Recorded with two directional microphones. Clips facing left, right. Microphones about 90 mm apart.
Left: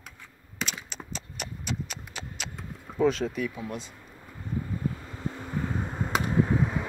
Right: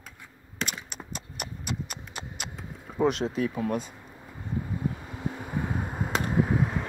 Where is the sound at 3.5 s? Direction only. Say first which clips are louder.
Right 7 dB; 50° right (ahead or behind).